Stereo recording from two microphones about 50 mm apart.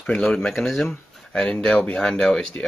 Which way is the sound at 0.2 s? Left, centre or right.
Centre.